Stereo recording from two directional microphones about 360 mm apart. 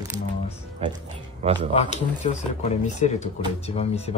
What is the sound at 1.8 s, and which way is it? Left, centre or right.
Speech, centre.